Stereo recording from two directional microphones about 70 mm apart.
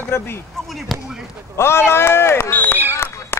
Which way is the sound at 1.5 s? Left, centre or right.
Left.